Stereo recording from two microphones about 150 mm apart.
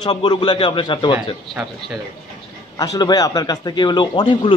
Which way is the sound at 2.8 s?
25° left (ahead or behind).